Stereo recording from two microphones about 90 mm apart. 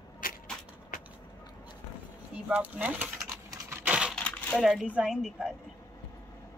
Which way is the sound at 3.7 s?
15° right (ahead or behind).